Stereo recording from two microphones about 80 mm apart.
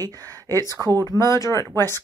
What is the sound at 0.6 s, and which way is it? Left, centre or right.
Speech, left.